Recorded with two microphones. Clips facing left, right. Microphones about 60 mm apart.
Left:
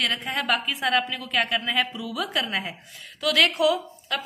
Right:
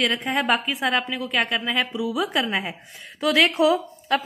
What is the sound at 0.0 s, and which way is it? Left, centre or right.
A woman's voice, centre.